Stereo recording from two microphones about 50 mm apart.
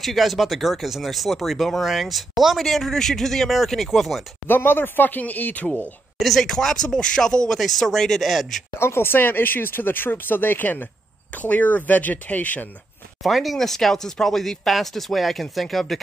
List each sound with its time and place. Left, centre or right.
0.0 s speech: centre
4.5 s speech: left
6.1 s speech: centre
8.7 s speech: left
13.2 s speech: centre